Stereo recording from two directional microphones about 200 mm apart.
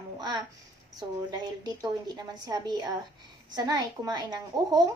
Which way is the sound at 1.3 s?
20° right (ahead or behind).